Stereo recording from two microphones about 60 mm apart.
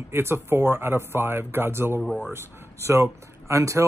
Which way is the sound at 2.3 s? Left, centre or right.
Right.